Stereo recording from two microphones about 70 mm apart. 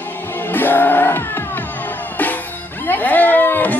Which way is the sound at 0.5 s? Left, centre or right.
Left.